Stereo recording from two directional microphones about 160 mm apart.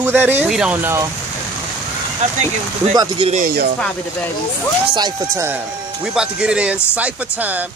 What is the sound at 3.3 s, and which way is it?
Speech, 65° right (ahead or behind).